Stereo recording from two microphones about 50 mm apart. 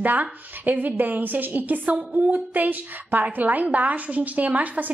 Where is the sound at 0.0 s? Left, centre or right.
Right.